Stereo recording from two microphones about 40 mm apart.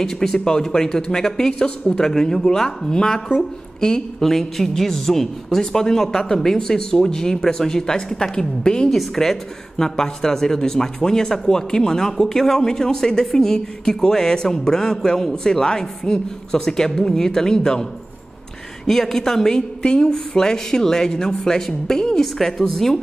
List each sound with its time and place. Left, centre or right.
0.0 s speech: centre
8.9 s speech: centre
18.9 s speech: centre